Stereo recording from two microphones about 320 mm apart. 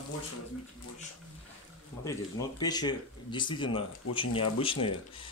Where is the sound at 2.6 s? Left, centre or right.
Centre.